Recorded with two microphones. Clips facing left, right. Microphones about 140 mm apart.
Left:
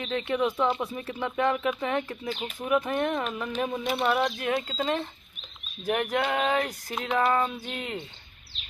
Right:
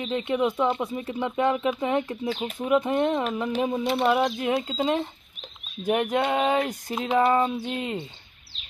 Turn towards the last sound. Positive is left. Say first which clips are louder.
# right 5 dB
turn(degrees=-25)  # may be behind; listen again after turning